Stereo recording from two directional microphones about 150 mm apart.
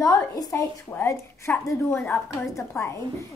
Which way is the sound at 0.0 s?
20° left (ahead or behind).